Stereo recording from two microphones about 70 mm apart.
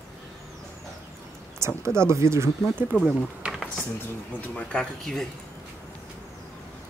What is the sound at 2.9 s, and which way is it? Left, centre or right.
Speech, right.